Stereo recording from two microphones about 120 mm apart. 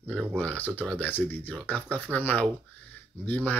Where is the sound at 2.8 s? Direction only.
15° left (ahead or behind).